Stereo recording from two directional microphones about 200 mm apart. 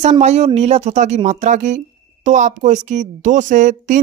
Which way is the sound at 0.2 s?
35° right (ahead or behind).